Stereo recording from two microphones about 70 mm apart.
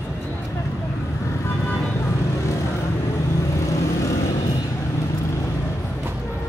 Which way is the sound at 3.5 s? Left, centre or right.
Left.